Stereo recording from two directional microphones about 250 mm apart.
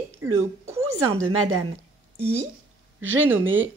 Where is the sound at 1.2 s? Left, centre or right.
Right.